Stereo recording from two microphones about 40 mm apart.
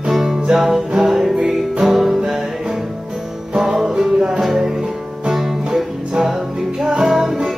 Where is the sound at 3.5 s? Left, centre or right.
Centre.